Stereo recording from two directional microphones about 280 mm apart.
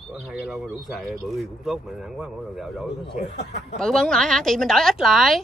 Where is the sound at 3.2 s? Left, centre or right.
Left.